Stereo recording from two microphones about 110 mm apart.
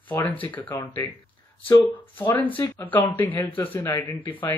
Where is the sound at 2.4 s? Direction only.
15° left (ahead or behind).